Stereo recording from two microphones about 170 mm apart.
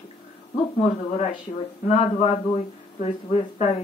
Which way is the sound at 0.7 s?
35° left (ahead or behind).